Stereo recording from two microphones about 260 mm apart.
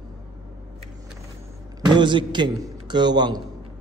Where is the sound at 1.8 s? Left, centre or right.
Centre.